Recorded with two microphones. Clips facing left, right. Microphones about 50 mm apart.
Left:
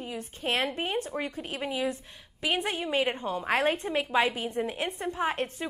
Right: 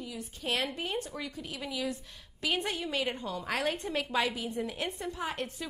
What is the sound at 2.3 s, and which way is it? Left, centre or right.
A woman's voice, left.